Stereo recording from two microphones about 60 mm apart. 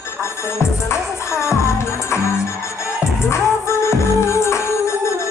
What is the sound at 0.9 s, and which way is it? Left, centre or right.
Music, left.